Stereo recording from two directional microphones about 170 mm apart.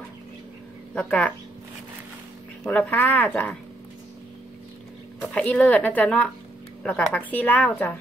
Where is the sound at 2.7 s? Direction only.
10° left (ahead or behind).